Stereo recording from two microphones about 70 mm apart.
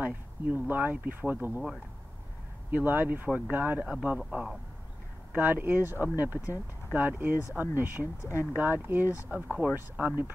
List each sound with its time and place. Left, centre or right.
0.0 s speech: right
2.7 s speech: right
5.3 s speech: right
8.2 s speech: left
8.5 s speech: right